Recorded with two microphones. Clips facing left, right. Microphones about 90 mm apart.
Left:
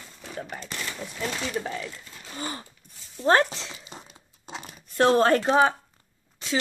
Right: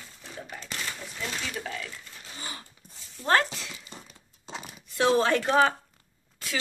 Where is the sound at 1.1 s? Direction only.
40° left (ahead or behind).